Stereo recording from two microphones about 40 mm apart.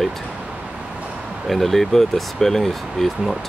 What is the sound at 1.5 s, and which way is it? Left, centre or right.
Speech, centre.